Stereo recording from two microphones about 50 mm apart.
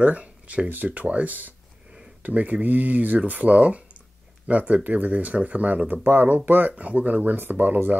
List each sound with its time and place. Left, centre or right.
0.0 s speech: right